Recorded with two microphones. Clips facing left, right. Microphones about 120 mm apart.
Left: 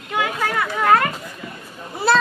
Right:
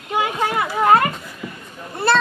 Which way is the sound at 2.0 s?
Centre (ahead or behind).